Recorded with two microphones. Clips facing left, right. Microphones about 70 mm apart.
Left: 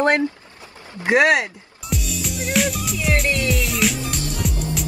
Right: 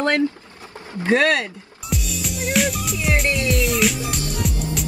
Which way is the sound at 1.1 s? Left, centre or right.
Centre.